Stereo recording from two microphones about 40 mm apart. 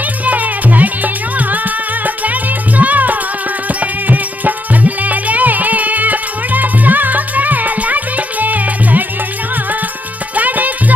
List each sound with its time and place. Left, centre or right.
0.2 s music: right
10.3 s music: right